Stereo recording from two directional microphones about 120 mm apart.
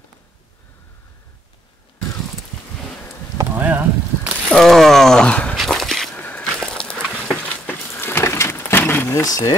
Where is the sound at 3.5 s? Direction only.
15° right (ahead or behind).